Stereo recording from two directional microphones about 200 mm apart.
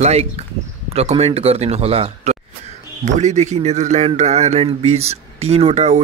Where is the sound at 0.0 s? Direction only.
30° right (ahead or behind).